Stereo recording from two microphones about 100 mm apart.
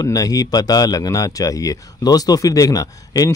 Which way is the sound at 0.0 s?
40° left (ahead or behind).